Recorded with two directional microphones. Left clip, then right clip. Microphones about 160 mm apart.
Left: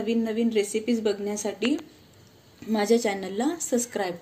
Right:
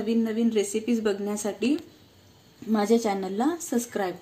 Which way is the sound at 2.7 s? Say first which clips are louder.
Even; 35° right (ahead or behind).